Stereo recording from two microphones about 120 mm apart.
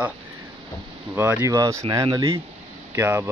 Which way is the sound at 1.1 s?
20° right (ahead or behind).